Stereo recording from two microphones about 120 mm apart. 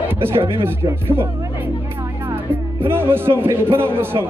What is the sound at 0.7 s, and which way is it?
Speech, 20° right (ahead or behind).